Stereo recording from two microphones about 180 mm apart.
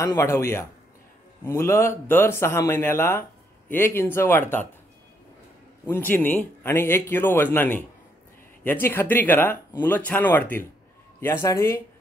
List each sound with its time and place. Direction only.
0.0 s speech: 15° left (ahead or behind)
5.9 s speech: 10° left (ahead or behind)